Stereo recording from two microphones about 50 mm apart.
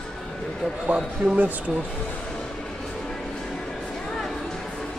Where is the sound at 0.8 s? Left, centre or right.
Centre.